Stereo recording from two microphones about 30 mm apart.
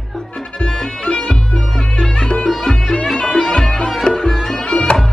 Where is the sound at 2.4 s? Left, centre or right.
Centre.